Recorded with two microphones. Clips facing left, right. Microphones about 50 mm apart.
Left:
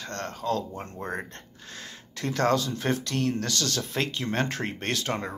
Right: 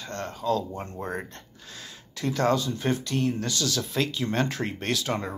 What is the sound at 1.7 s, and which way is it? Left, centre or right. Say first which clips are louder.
Speech: left 2 dB; left.